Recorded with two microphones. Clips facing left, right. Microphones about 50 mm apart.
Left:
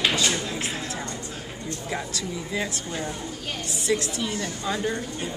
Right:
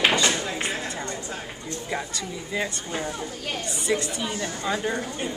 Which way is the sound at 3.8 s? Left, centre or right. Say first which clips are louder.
Left 1 dB; centre.